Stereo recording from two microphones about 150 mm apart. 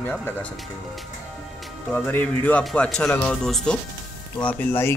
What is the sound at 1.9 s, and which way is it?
Speech, 10° left (ahead or behind).